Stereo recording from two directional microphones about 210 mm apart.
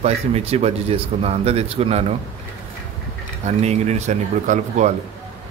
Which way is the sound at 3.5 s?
30° right (ahead or behind).